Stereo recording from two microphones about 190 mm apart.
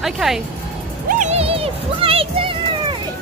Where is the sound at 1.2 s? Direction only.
30° right (ahead or behind).